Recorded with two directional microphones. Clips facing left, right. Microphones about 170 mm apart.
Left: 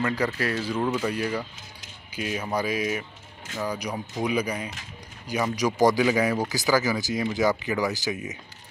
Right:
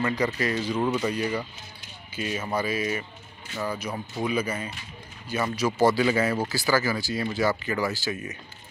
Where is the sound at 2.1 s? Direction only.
5° left (ahead or behind).